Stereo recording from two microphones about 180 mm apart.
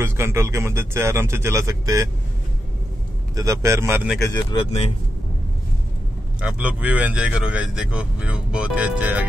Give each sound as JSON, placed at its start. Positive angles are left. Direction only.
{"t": 0.0, "sound": "speech", "side_deg": -15}
{"t": 3.3, "sound": "speech", "side_deg": -15}
{"t": 4.2, "sound": "speech", "side_deg": 15}
{"t": 4.6, "sound": "speech", "side_deg": 30}
{"t": 6.4, "sound": "speech", "side_deg": -5}